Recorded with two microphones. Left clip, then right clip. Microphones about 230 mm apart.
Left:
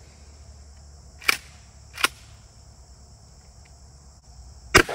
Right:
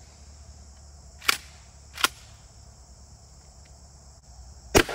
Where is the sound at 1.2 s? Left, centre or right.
Centre.